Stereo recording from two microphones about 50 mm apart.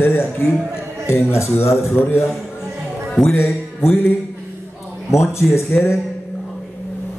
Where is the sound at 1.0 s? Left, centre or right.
Left.